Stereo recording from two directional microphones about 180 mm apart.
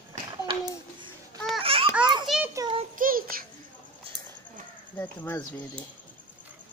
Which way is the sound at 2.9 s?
50° right (ahead or behind).